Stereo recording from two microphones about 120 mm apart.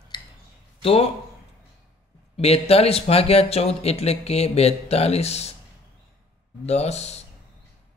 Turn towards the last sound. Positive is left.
turn(degrees=65)  # may be behind; listen again after turning